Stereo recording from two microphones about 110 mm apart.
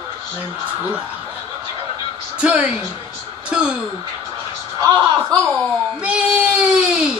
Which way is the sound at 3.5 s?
10° right (ahead or behind).